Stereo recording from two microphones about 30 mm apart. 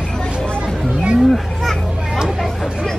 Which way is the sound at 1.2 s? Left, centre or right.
Centre.